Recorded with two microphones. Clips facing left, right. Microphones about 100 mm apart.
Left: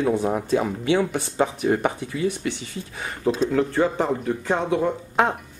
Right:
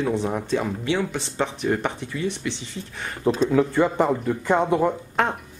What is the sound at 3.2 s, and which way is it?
Speech, centre (ahead or behind).